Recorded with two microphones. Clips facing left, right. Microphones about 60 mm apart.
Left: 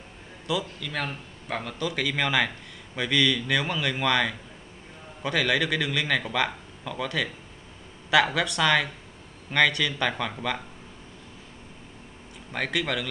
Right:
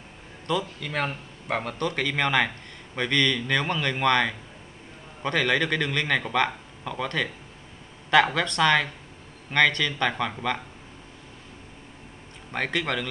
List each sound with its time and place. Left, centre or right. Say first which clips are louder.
0.5 s a man's voice: right 2 dB; centre
0.8 s speech: right 3 dB; right
1.8 s a man's voice: left 1 dB; centre
8.4 s a man's voice: right 1 dB; centre
10.0 s a man's voice: right 2 dB; centre
12.7 s a man's voice: even; centre